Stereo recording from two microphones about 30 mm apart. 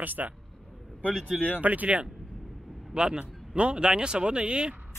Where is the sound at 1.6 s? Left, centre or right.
Right.